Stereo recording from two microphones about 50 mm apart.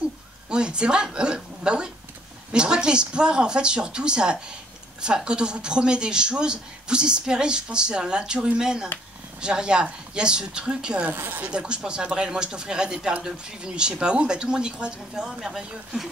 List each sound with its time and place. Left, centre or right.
0.5 s speech: centre
11.1 s a woman's voice: right
11.5 s speech: centre